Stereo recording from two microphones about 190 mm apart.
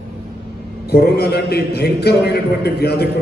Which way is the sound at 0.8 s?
55° left (ahead or behind).